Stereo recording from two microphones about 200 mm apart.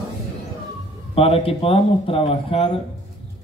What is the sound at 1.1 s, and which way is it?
A man's voice, 30° left (ahead or behind).